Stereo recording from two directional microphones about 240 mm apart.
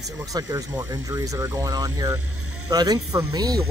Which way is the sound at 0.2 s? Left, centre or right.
Centre.